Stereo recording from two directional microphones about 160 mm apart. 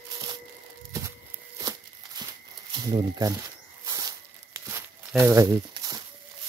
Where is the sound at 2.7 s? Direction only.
25° right (ahead or behind).